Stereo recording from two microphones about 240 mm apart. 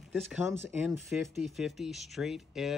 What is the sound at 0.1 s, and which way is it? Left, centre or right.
Speech, centre.